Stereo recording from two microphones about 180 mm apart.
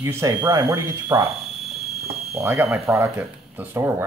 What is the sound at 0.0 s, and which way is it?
Speech, 15° right (ahead or behind).